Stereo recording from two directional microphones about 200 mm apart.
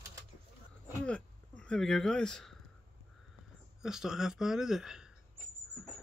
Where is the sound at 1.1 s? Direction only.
5° left (ahead or behind).